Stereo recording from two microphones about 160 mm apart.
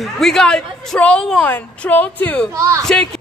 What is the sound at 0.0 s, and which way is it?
A woman's voice, centre (ahead or behind).